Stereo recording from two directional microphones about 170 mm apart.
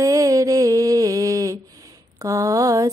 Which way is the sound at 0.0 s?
20° right (ahead or behind).